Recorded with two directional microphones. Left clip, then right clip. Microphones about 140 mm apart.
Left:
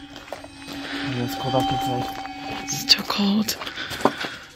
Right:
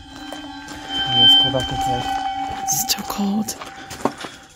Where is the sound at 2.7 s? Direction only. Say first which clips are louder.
Left 7 dB; 50° right (ahead or behind); by 3.5 s 30° right (ahead or behind).